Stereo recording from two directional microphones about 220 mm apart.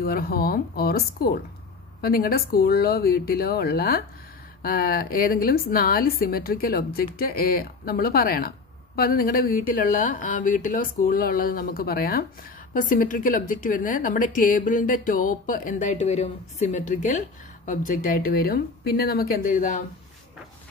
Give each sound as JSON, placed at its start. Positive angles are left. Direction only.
{"t": 0.0, "sound": "a woman's voice", "side_deg": 45}